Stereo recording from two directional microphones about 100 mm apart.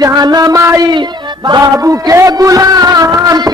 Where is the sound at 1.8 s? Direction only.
35° right (ahead or behind).